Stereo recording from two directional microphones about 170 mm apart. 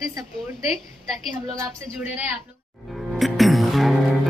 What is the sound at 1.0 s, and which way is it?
A woman's voice, centre (ahead or behind).